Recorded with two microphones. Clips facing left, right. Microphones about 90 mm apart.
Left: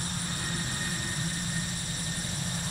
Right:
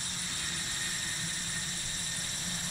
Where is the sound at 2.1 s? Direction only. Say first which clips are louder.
Left 6 dB; 20° left (ahead or behind).